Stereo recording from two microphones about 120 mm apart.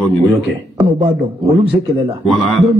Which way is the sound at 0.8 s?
55° right (ahead or behind).